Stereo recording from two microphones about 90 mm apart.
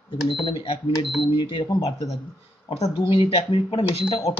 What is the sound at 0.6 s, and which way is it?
Speech, 90° left.